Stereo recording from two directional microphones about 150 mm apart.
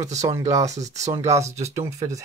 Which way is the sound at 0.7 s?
50° right (ahead or behind).